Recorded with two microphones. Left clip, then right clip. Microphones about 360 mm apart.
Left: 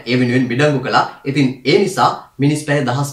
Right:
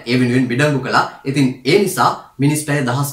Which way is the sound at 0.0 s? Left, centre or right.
Centre.